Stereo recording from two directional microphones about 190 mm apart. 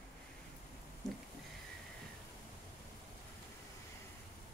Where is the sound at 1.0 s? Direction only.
Centre (ahead or behind).